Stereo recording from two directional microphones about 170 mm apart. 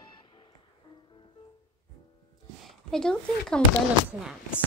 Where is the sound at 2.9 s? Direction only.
5° left (ahead or behind).